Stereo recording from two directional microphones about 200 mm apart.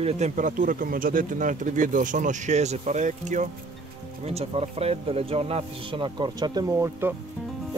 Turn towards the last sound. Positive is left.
turn(degrees=-15)  # may be behind; listen again after turning